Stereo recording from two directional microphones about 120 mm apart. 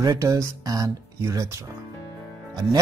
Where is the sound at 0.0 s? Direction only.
30° right (ahead or behind).